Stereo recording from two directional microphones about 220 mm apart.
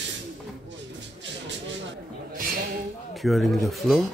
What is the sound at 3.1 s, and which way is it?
Speech, centre (ahead or behind).